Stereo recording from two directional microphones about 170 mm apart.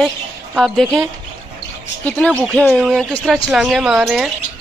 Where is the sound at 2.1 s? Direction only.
10° left (ahead or behind).